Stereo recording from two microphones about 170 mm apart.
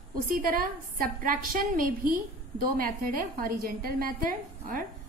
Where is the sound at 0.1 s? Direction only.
60° right (ahead or behind).